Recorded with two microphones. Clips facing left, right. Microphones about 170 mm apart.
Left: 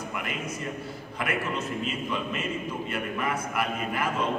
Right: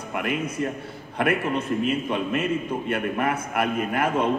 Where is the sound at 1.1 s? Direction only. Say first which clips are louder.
Right 7 dB; 55° right (ahead or behind).